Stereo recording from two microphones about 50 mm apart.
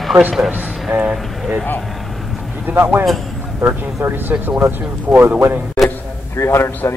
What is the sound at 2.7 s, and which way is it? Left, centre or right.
Speech, right.